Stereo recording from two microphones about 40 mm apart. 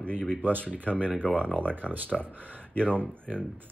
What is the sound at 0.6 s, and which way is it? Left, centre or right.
Speech, left.